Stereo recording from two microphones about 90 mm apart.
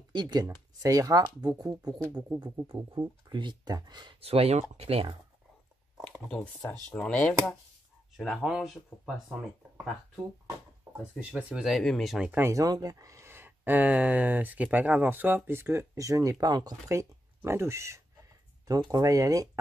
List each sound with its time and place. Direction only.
0.1 s speech: 55° right (ahead or behind)
2.4 s speech: 60° right (ahead or behind)
4.2 s speech: 90° right
6.7 s speech: 10° left (ahead or behind); by 9.1 s 5° right (ahead or behind)
11.1 s speech: 10° right (ahead or behind)
11.6 s speech: centre (ahead or behind)
12.4 s speech: 30° right (ahead or behind)
12.6 s speech: 45° right (ahead or behind)
16.9 s speech: 30° right (ahead or behind)
18.7 s speech: 45° right (ahead or behind)